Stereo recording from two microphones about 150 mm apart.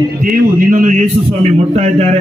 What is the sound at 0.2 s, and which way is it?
Speech, 65° right (ahead or behind).